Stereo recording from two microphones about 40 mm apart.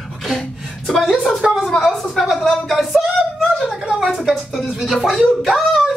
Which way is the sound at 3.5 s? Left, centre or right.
Centre.